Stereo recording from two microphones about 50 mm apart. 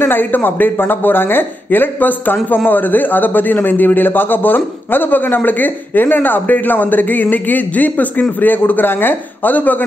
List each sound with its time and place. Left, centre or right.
0.0 s speech: left